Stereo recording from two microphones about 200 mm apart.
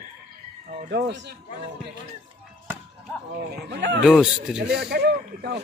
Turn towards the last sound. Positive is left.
turn(degrees=-55)  # may be behind; listen again after turning